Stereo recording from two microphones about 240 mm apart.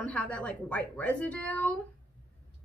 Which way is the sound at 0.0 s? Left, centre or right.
Centre.